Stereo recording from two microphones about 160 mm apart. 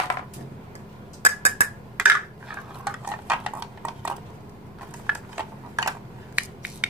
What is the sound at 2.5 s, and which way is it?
Stir, 5° right (ahead or behind).